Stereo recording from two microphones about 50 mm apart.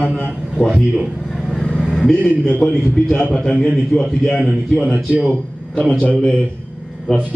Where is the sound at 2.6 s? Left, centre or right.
Centre.